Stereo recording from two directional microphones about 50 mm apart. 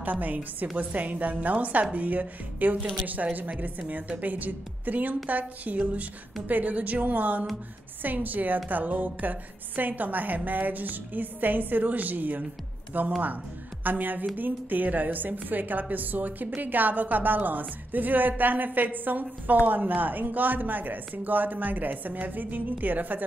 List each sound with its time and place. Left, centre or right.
0.0 s a woman's voice: right